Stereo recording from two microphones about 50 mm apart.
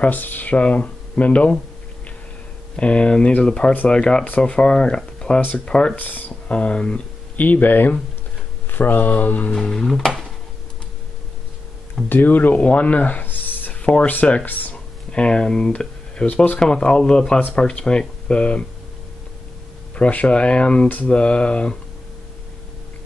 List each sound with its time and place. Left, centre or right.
0.0 s speech: left
2.7 s speech: left
5.9 s speech: left
6.5 s speech: left
7.3 s speech: left
9.5 s speech: centre
12.1 s speech: left
12.6 s a sound: left
14.0 s speech: left
15.1 s speech: centre
20.0 s speech: left